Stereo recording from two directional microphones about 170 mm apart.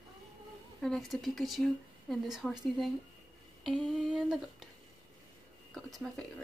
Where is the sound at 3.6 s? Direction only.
Centre (ahead or behind).